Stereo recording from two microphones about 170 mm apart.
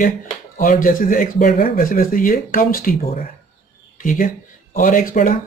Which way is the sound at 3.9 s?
50° left (ahead or behind).